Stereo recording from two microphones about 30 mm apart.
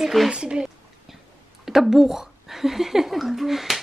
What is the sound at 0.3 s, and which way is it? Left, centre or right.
Speech, right.